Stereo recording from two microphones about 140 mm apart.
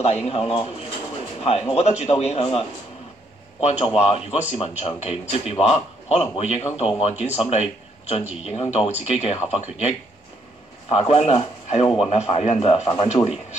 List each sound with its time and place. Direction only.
0.0 s a man's voice: 45° left (ahead or behind)
3.8 s a man's voice: 45° left (ahead or behind)